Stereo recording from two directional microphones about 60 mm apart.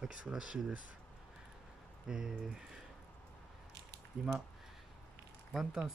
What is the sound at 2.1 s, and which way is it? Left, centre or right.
Speech, centre.